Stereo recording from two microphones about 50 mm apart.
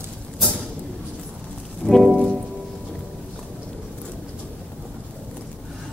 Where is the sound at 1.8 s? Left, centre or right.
Left.